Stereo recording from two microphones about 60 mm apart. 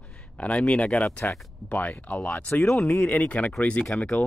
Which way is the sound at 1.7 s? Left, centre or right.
Left.